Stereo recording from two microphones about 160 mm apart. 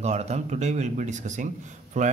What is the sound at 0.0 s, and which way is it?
Speech, 45° right (ahead or behind).